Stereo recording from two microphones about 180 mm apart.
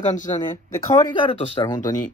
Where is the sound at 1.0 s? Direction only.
25° left (ahead or behind).